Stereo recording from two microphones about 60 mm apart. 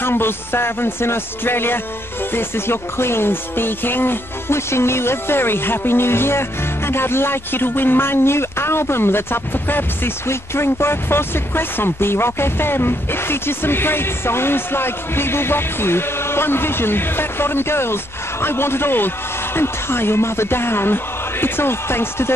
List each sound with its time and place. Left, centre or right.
0.0 s music: left